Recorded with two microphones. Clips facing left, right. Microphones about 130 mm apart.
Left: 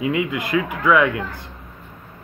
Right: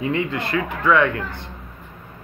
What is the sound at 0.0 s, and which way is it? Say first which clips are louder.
Speech: left 1 dB; 10° left (ahead or behind).